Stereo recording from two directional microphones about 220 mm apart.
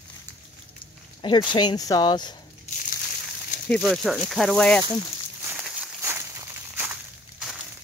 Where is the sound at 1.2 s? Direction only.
20° left (ahead or behind).